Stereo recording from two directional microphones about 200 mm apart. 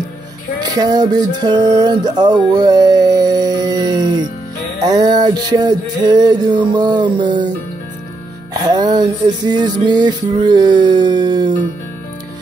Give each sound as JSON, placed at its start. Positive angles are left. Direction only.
{"t": 0.6, "sound": "music", "side_deg": -20}
{"t": 8.6, "sound": "music", "side_deg": -20}